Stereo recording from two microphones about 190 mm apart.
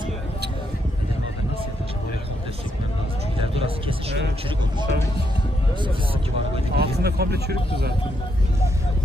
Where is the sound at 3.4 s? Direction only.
30° right (ahead or behind).